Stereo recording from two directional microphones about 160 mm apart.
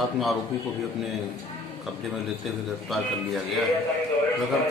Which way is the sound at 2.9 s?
Centre (ahead or behind).